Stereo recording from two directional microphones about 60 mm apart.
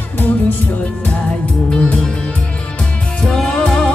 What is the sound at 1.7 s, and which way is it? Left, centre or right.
Music, centre.